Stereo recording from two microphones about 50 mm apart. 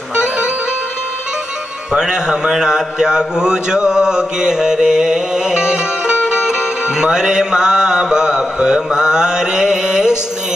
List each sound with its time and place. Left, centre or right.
0.1 s music: centre
1.9 s mantra: centre